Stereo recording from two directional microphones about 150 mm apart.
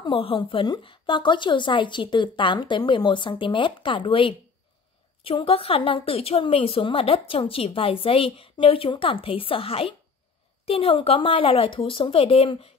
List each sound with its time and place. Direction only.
0.0 s a woman's voice: 35° left (ahead or behind)